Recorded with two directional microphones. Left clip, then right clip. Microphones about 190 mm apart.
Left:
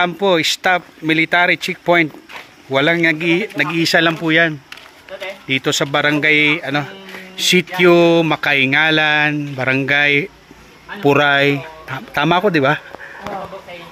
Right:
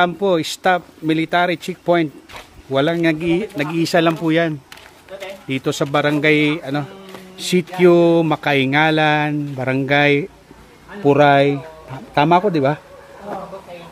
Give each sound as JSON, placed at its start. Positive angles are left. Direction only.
{"t": 0.0, "sound": "speech", "side_deg": -5}
{"t": 5.1, "sound": "speech", "side_deg": 25}
{"t": 5.5, "sound": "speech", "side_deg": -5}
{"t": 11.1, "sound": "speech", "side_deg": 5}